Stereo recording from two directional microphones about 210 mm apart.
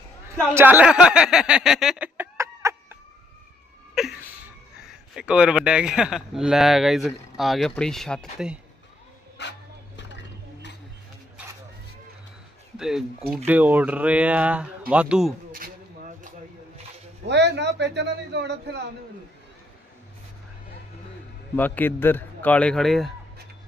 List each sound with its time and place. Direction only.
0.6 s chicken: 10° right (ahead or behind)
4.0 s a sound: centre (ahead or behind)
4.7 s a man's voice: 5° right (ahead or behind)
9.4 s music: 55° left (ahead or behind)
12.7 s a man's voice: centre (ahead or behind)
15.5 s a sound: 40° right (ahead or behind)
17.3 s a man's voice: 55° right (ahead or behind)
21.5 s a man's voice: 10° left (ahead or behind)